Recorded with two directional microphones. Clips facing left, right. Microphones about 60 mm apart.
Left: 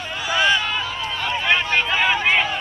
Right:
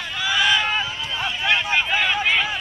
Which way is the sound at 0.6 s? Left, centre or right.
Right.